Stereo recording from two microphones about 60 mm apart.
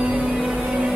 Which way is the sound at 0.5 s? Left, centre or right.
Right.